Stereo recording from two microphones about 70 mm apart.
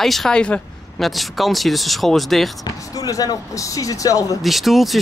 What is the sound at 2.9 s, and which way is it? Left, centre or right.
Speech, left.